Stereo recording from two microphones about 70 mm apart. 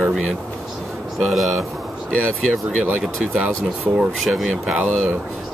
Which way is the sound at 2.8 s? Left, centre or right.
Right.